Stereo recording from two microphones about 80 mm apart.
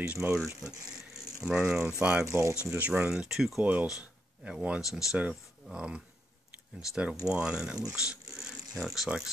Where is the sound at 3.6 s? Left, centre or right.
Centre.